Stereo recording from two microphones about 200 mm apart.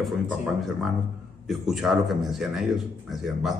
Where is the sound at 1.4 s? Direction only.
Centre (ahead or behind).